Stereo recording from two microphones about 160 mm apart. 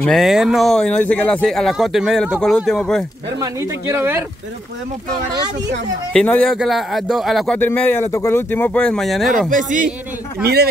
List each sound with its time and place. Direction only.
0.1 s speech: centre (ahead or behind)
3.3 s speech: 15° right (ahead or behind)
6.1 s speech: 5° left (ahead or behind)
7.5 s speech: 10° left (ahead or behind)
9.5 s speech: 55° right (ahead or behind)
10.4 s speech: 80° right